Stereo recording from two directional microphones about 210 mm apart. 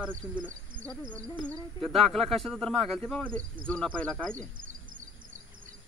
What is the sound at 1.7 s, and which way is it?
Speech, centre (ahead or behind).